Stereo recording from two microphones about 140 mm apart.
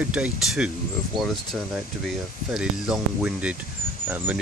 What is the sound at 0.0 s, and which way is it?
Speech, 10° right (ahead or behind).